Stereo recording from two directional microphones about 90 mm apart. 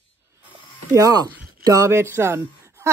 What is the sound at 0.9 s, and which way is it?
Speech, 40° right (ahead or behind).